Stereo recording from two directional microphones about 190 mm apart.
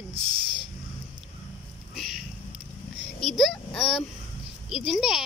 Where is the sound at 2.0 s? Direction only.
Centre (ahead or behind).